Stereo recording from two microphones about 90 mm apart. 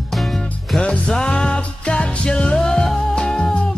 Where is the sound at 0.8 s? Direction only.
10° left (ahead or behind).